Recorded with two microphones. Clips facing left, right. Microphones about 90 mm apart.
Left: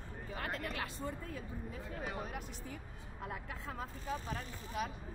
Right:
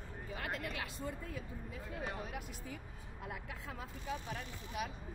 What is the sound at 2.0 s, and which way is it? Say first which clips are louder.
Speech: even; 40° left (ahead or behind).